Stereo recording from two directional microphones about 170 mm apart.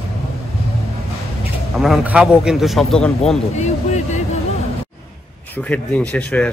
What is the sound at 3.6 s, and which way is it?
Speech, 45° left (ahead or behind).